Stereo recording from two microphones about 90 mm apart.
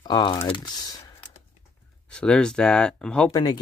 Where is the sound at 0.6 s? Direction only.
45° left (ahead or behind).